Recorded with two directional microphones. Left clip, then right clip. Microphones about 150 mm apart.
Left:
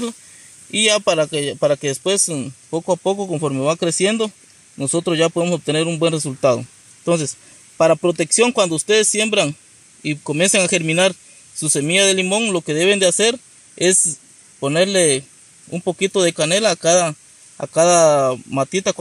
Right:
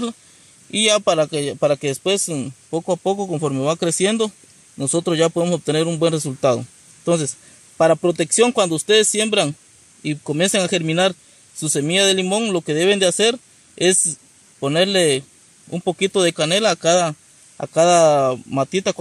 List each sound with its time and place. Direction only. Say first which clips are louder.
0.7 s a man's voice: even; 10° left (ahead or behind)